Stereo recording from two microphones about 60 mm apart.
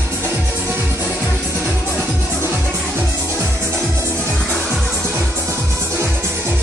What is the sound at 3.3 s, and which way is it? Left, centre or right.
Music, right.